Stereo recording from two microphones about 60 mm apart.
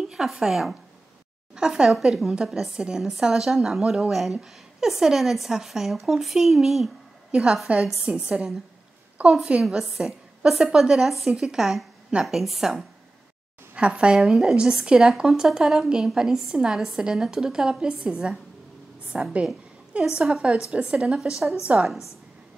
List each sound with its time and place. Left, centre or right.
0.0 s a woman's voice: centre
7.3 s a woman's voice: centre
9.6 s a woman's voice: centre
13.7 s a woman's voice: centre
14.2 s a woman's voice: centre; by 21.8 s right